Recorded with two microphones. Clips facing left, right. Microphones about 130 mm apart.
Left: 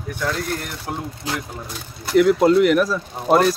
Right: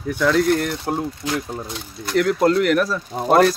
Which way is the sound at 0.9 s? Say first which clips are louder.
Right 3 dB; 35° right (ahead or behind).